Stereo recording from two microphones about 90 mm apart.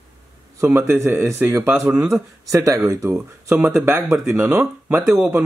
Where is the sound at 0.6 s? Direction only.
30° right (ahead or behind).